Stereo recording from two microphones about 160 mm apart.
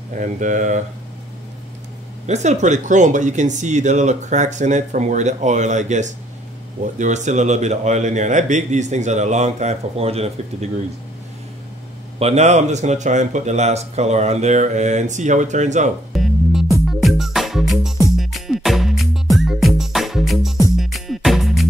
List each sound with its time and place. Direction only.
0.1 s speech: 55° right (ahead or behind)
2.2 s speech: 45° right (ahead or behind)
12.2 s speech: 40° right (ahead or behind)
16.1 s music: centre (ahead or behind)